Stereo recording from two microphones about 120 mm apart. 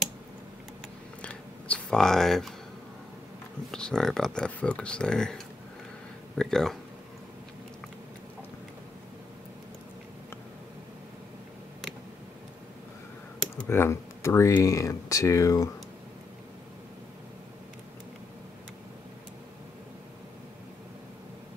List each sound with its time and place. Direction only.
1.2 s scissors: 10° left (ahead or behind)
3.7 s speech: 5° left (ahead or behind)
13.7 s speech: 20° left (ahead or behind)